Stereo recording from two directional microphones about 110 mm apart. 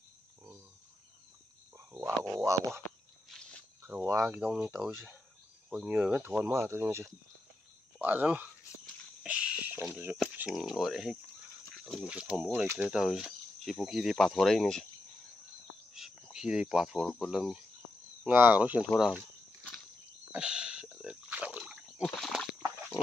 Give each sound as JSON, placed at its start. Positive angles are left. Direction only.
{"t": 1.8, "sound": "speech", "side_deg": -20}
{"t": 3.3, "sound": "a sound", "side_deg": 5}
{"t": 3.8, "sound": "speech", "side_deg": -20}
{"t": 4.7, "sound": "speech", "side_deg": -5}
{"t": 9.2, "sound": "a sound", "side_deg": -10}
{"t": 9.8, "sound": "speech", "side_deg": -20}
{"t": 10.5, "sound": "speech", "side_deg": -5}
{"t": 11.7, "sound": "cricket", "side_deg": 5}
{"t": 12.0, "sound": "speech", "side_deg": -10}
{"t": 15.9, "sound": "cricket", "side_deg": -5}
{"t": 17.3, "sound": "speech", "side_deg": -5}
{"t": 18.2, "sound": "speech", "side_deg": -15}
{"t": 20.3, "sound": "a sound", "side_deg": -10}
{"t": 22.0, "sound": "a sound", "side_deg": 5}